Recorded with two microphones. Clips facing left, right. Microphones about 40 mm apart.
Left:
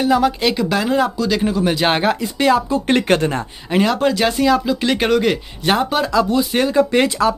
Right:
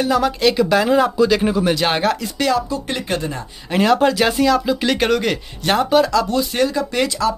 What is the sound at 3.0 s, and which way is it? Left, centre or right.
Speech, left.